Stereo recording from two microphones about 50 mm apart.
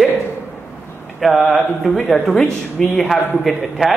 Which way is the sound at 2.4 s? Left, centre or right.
Left.